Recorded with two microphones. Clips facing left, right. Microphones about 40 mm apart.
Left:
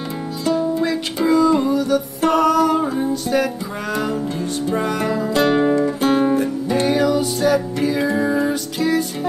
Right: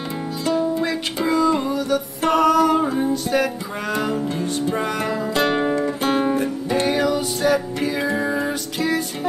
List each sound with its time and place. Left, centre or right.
0.8 s music: right
4.6 s music: right